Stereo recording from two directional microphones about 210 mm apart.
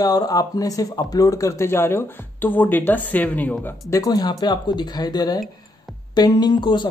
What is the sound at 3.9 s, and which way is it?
Speech, 15° left (ahead or behind).